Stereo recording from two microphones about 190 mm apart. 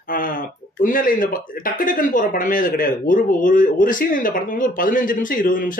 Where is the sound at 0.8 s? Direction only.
45° left (ahead or behind).